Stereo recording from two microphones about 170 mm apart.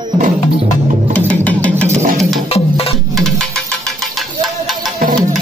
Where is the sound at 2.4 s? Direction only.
35° left (ahead or behind).